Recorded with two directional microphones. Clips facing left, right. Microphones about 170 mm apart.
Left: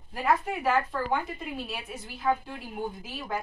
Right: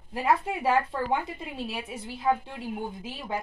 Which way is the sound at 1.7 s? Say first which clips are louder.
Right 3 dB; 30° right (ahead or behind).